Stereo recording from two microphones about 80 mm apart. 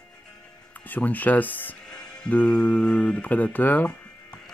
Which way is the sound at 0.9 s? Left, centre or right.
Left.